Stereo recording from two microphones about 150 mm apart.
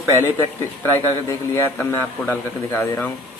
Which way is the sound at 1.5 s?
15° left (ahead or behind).